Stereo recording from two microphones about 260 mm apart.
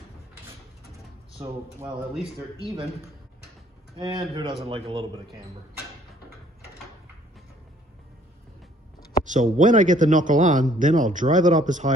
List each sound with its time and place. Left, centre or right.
1.8 s a man's voice: centre
2.6 s a man's voice: centre
4.0 s a man's voice: centre
9.2 s a man's voice: right